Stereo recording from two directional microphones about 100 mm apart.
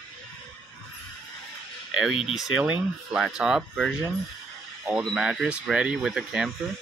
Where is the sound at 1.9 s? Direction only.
5° right (ahead or behind).